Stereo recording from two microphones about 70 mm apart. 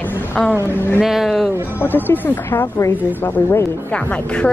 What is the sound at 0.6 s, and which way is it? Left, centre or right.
Speech, left.